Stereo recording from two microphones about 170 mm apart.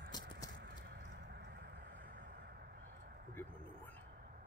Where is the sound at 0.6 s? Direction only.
80° right.